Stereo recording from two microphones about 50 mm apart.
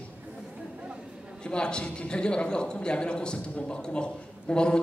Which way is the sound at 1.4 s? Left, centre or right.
Centre.